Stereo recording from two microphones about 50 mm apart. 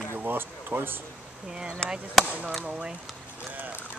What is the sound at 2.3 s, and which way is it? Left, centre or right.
Speech, right.